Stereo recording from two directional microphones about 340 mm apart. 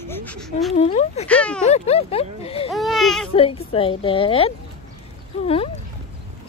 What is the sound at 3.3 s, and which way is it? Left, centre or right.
Speech, centre.